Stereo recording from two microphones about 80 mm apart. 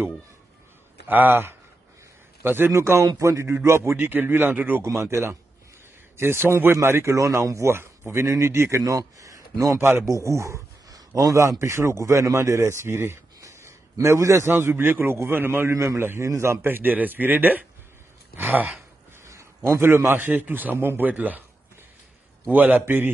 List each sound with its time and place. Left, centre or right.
1.0 s a man's voice: right
19.2 s a man's voice: right
22.5 s a man's voice: right